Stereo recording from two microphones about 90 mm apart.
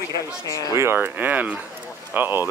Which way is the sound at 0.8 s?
25° right (ahead or behind).